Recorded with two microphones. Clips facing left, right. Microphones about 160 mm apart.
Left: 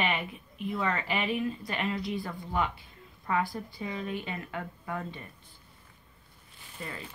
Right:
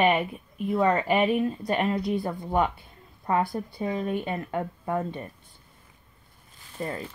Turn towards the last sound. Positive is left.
turn(degrees=-45)  # may be behind; listen again after turning